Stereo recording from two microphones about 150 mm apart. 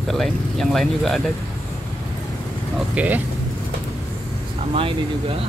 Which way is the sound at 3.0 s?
10° right (ahead or behind).